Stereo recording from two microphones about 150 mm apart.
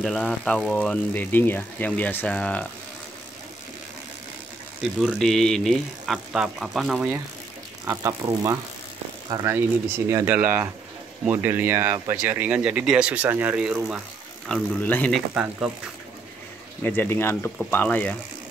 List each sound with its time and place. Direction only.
0.0 s speech: 10° left (ahead or behind)
5.0 s speech: 5° left (ahead or behind)
7.8 s speech: 20° right (ahead or behind); by 14.0 s 5° right (ahead or behind)
14.5 s speech: 5° left (ahead or behind)
16.8 s speech: 15° left (ahead or behind)